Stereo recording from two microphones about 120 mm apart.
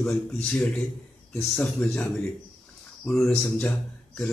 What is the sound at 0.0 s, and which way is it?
A man's voice, 5° left (ahead or behind).